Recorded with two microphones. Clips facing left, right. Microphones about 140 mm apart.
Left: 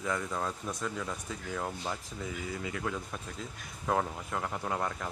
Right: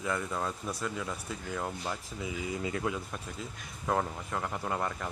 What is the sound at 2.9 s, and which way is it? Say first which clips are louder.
Speech: right 1 dB; centre (ahead or behind).